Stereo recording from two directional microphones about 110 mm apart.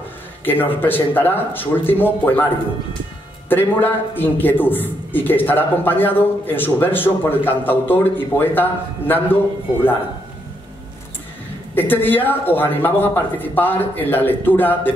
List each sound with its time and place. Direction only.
0.5 s a man's voice: 20° left (ahead or behind)
3.4 s a man's voice: 20° left (ahead or behind)
11.7 s a man's voice: 20° left (ahead or behind)